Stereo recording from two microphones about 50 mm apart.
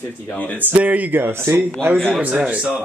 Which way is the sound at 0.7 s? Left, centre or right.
Right.